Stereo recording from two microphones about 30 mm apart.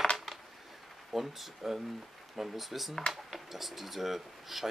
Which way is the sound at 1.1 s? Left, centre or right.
Centre.